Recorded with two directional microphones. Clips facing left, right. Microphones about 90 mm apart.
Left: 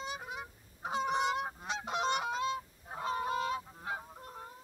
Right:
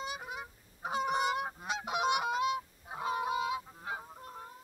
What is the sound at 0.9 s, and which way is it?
Goose, 5° right (ahead or behind).